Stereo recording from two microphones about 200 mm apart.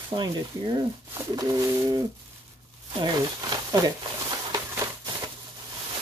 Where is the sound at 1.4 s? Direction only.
20° right (ahead or behind).